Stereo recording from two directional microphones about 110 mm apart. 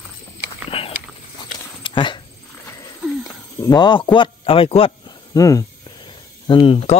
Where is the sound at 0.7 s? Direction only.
60° left (ahead or behind).